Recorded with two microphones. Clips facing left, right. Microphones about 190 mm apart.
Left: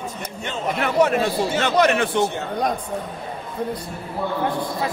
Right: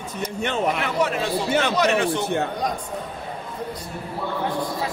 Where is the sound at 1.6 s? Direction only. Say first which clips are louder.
Left 2 dB; 55° left (ahead or behind).